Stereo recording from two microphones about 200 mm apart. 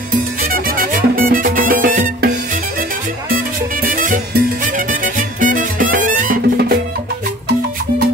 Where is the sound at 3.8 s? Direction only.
45° right (ahead or behind).